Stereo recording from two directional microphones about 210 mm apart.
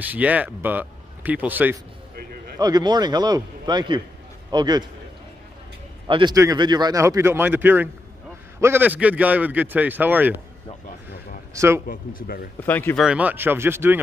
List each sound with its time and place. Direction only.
0.0 s speech: 5° right (ahead or behind)
2.6 s a man's voice: 20° right (ahead or behind)
6.0 s speech: 25° right (ahead or behind)
11.5 s speech: 15° right (ahead or behind)
11.9 s a man's voice: 40° left (ahead or behind)
12.6 s speech: 10° left (ahead or behind)
13.0 s speech: 5° right (ahead or behind)